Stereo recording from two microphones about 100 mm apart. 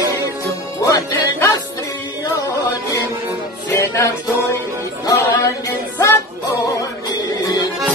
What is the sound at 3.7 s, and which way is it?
Music, 30° left (ahead or behind).